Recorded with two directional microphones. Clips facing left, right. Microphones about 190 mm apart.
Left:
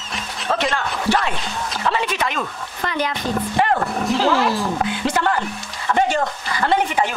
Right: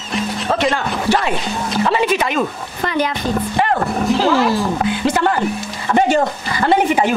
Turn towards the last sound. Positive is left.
turn(degrees=-10)  # may be behind; listen again after turning